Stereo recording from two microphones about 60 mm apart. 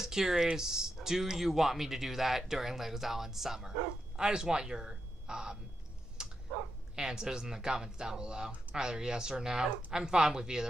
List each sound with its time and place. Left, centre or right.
0.0 s speech: centre
6.2 s dog: centre
7.0 s speech: centre